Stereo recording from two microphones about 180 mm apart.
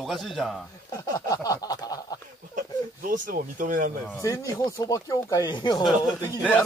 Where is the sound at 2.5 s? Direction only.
50° right (ahead or behind).